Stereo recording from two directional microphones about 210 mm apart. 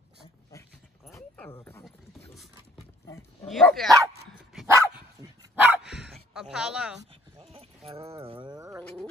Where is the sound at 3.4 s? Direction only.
Centre (ahead or behind).